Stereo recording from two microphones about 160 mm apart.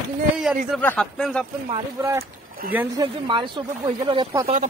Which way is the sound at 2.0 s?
25° right (ahead or behind).